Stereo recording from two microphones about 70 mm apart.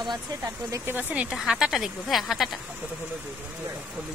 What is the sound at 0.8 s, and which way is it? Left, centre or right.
Speech, right.